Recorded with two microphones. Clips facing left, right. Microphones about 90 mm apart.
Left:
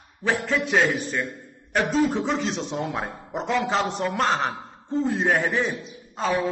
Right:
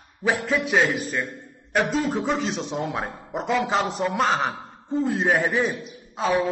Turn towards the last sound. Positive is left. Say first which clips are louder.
# right 1 dB
turn(degrees=-5)  # may be behind; listen again after turning